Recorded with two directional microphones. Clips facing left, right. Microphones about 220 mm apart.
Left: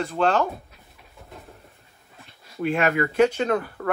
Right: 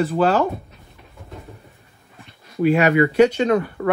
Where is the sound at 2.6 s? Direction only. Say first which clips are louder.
Right 7 dB; centre (ahead or behind).